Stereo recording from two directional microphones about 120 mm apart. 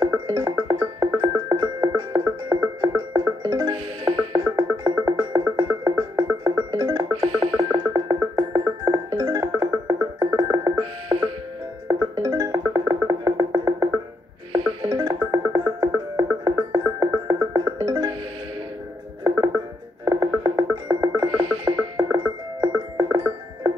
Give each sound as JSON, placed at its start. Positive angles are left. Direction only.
{"t": 0.0, "sound": "music", "side_deg": -30}
{"t": 11.9, "sound": "music", "side_deg": -30}
{"t": 14.9, "sound": "music", "side_deg": -30}
{"t": 19.2, "sound": "music", "side_deg": -25}